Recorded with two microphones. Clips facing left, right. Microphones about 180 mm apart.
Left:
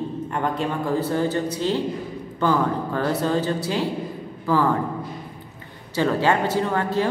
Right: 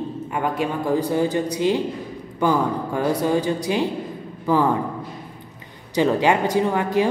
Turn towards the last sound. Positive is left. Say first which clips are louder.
# right 3 dB
turn(degrees=-15)  # may be behind; listen again after turning